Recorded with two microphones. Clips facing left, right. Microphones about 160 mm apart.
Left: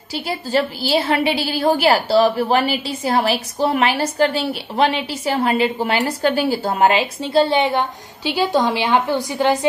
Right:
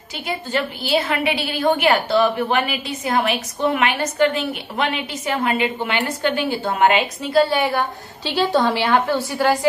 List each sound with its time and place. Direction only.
0.3 s a woman's voice: 35° left (ahead or behind)
7.3 s a woman's voice: 25° left (ahead or behind)
8.2 s a woman's voice: 10° left (ahead or behind)